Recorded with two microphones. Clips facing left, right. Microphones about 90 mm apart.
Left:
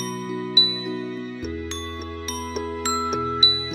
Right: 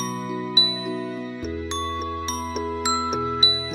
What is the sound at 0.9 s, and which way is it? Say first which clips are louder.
Music: right 1 dB; 55° right (ahead or behind).